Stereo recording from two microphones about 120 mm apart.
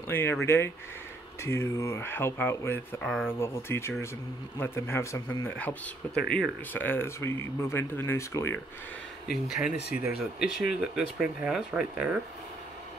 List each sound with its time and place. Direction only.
0.1 s speech: 20° left (ahead or behind)
9.5 s speech: 10° right (ahead or behind)